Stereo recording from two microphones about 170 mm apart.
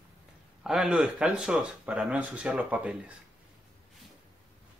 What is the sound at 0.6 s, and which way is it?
Speech, centre (ahead or behind).